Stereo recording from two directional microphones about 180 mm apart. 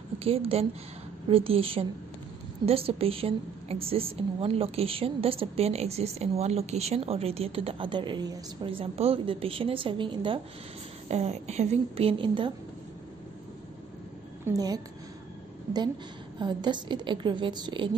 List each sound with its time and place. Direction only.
0.2 s a woman's voice: 35° right (ahead or behind)
14.4 s a woman's voice: 20° right (ahead or behind)
16.3 s a woman's voice: 25° right (ahead or behind)